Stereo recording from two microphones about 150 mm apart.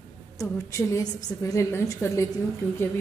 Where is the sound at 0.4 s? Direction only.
20° left (ahead or behind).